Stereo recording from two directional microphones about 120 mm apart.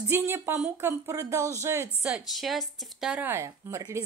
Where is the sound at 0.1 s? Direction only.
20° right (ahead or behind).